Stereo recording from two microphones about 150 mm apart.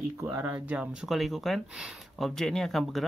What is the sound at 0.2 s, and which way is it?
Speech, 25° right (ahead or behind).